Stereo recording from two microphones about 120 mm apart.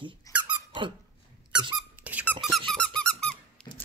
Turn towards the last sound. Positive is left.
turn(degrees=5)  # may be behind; listen again after turning